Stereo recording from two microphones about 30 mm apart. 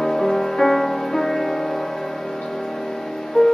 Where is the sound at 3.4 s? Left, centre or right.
Centre.